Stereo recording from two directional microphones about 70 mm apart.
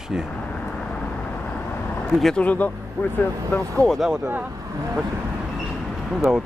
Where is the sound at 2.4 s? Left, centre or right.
Left.